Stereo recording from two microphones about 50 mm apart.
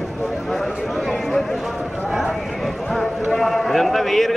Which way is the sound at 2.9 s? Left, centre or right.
Centre.